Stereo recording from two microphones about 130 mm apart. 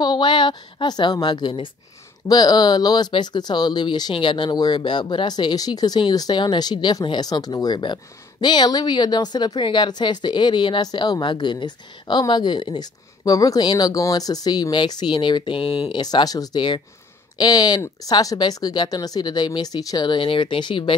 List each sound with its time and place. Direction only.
0.0 s a woman's voice: 35° left (ahead or behind)